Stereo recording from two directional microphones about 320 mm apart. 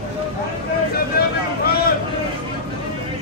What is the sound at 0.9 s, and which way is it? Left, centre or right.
Vehicle, left.